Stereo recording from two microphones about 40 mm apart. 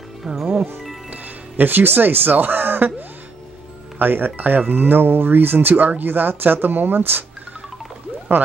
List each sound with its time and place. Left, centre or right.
1.1 s speech: right
4.0 s speech: right
8.3 s speech: right